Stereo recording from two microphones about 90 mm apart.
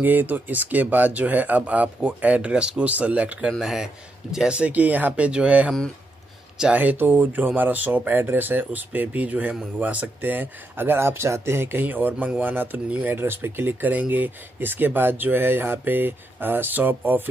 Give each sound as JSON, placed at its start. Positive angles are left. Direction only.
{"t": 0.0, "sound": "speech", "side_deg": -20}
{"t": 3.4, "sound": "speech", "side_deg": -5}